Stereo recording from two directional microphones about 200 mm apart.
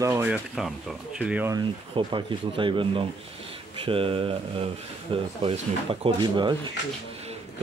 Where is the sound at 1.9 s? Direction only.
25° right (ahead or behind).